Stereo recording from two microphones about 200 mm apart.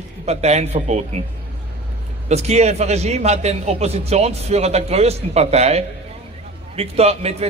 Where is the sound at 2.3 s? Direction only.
35° right (ahead or behind).